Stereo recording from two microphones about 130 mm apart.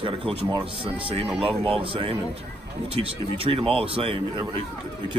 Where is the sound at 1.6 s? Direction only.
45° right (ahead or behind).